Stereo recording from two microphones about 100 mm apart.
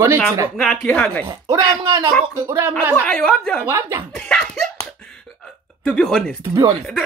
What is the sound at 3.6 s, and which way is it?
Speech, 30° right (ahead or behind).